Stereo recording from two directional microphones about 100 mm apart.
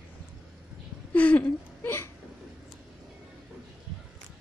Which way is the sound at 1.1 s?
15° left (ahead or behind).